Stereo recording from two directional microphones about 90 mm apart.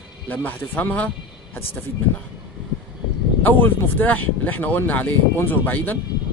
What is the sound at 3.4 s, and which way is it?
Speech, 20° left (ahead or behind).